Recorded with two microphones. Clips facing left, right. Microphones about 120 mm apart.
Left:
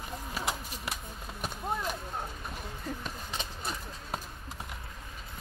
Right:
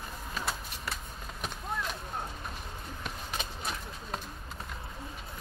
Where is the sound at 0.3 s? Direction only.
15° left (ahead or behind).